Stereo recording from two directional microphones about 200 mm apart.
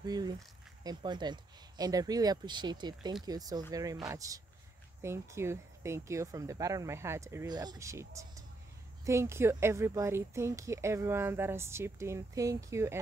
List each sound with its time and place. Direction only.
0.0 s speech: 20° right (ahead or behind)